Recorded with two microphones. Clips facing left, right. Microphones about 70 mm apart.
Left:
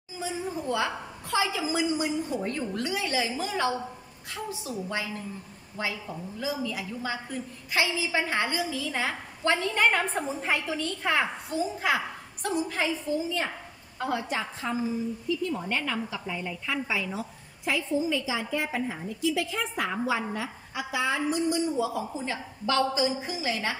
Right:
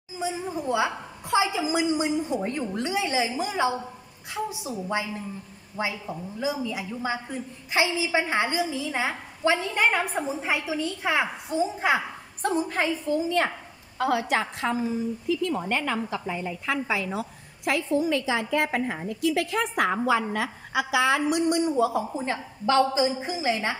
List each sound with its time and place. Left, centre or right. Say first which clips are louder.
0.2 s a woman's voice: right 3 dB; centre
11.5 s a child's voice: right 4 dB; right
12.4 s a woman's voice: right 3 dB; right
13.9 s a woman's voice: right 6 dB; right
15.7 s a woman's voice: right 3 dB; right